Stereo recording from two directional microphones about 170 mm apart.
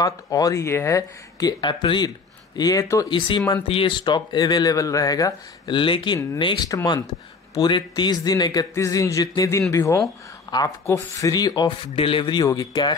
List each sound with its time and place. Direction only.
0.0 s speech: 20° left (ahead or behind)